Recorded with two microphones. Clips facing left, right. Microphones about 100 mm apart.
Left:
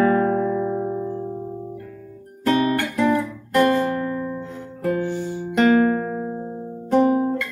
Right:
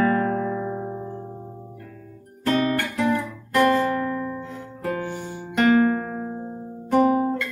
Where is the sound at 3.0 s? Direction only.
25° left (ahead or behind).